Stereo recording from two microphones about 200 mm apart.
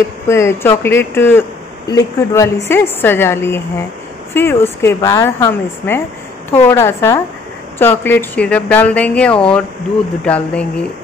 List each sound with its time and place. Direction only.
0.3 s speech: 15° left (ahead or behind)